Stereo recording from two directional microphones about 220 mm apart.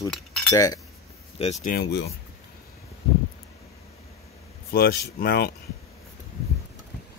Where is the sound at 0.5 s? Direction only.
15° left (ahead or behind).